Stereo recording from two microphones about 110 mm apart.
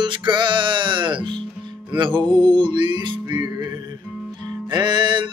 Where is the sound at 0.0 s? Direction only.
45° right (ahead or behind).